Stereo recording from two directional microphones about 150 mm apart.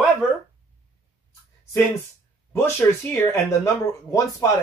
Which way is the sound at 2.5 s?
15° left (ahead or behind).